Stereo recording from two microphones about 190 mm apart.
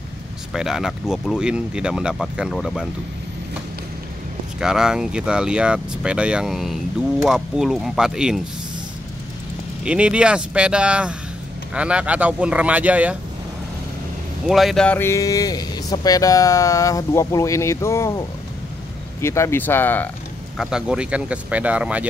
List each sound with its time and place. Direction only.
0.5 s speech: centre (ahead or behind)
4.6 s speech: 5° right (ahead or behind)
9.8 s speech: 5° right (ahead or behind)
14.5 s speech: centre (ahead or behind)
19.2 s speech: 15° left (ahead or behind)
20.5 s speech: 5° right (ahead or behind)